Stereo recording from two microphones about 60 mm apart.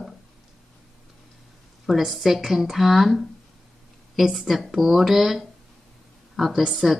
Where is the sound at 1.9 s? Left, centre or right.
Centre.